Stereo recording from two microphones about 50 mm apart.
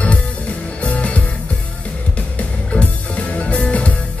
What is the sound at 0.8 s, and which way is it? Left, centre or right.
Music, left.